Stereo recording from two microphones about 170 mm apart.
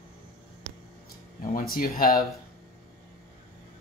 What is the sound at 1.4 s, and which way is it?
Speech, 55° left (ahead or behind).